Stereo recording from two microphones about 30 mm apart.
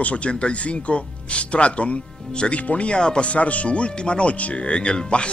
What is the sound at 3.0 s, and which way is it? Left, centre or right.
Speech, left.